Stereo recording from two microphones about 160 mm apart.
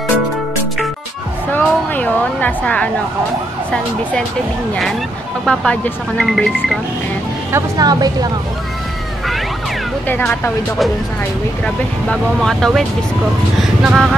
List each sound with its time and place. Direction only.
1.5 s music: 10° left (ahead or behind)
5.4 s speech: 5° left (ahead or behind)
7.5 s a woman's voice: 25° right (ahead or behind)
10.0 s speech: 10° left (ahead or behind)
11.6 s speech: 5° left (ahead or behind)